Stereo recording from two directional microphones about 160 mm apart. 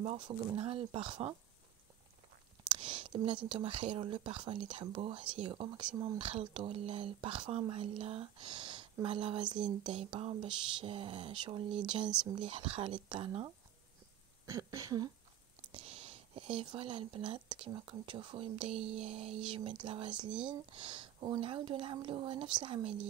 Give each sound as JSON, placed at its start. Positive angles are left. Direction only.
{"t": 0.0, "sound": "speech", "side_deg": -35}
{"t": 2.7, "sound": "whispering", "side_deg": -30}
{"t": 3.4, "sound": "speech", "side_deg": -35}
{"t": 14.4, "sound": "a sound", "side_deg": -20}
{"t": 15.7, "sound": "speech", "side_deg": -40}